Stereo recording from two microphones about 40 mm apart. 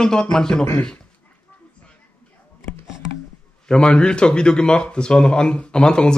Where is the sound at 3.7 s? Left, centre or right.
Left.